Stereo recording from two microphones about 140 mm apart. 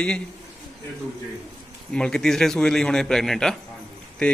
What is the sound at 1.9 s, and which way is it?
Speech, 5° left (ahead or behind).